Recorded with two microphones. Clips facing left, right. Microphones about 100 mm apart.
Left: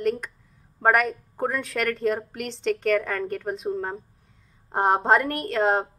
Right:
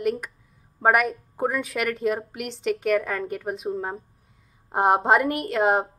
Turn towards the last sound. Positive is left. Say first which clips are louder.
# right 1 dB
turn(degrees=-5)  # may be behind; listen again after turning